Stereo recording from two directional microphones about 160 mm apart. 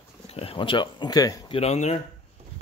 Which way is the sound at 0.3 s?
35° left (ahead or behind).